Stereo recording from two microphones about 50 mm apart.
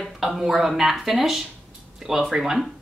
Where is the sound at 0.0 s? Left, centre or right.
Centre.